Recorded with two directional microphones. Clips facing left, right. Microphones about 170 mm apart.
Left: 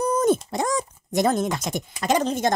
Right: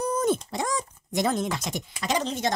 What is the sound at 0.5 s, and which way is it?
A woman's voice, 45° left (ahead or behind).